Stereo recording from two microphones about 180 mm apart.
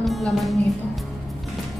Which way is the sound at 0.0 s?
Centre (ahead or behind).